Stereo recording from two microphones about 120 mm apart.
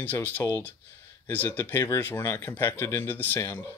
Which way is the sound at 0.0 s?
15° left (ahead or behind).